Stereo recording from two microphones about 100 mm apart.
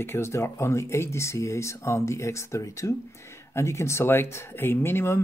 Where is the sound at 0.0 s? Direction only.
25° left (ahead or behind).